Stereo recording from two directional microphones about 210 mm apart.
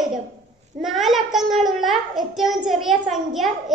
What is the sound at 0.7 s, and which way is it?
A child's voice, centre (ahead or behind).